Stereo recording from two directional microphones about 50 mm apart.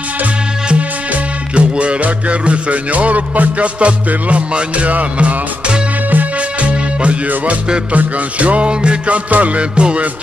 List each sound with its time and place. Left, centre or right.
0.7 s music: right